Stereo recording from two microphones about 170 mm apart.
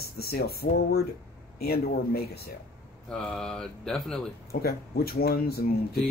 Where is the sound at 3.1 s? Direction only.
5° left (ahead or behind).